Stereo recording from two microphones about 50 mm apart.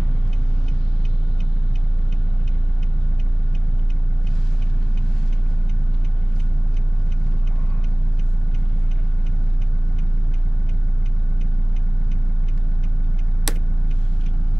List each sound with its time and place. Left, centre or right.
13.5 s vehicle: centre